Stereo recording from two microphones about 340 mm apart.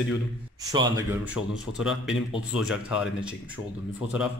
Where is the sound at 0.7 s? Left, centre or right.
Centre.